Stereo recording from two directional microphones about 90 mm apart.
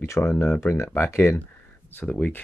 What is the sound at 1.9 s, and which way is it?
Speech, 20° left (ahead or behind).